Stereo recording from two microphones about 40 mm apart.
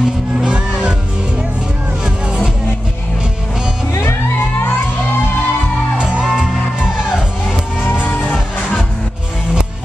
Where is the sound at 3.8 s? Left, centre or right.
Left.